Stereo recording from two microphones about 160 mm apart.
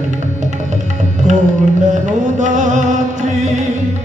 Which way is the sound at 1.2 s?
50° right (ahead or behind).